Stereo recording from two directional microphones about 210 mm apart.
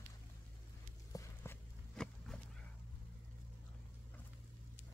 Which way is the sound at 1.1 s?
15° left (ahead or behind).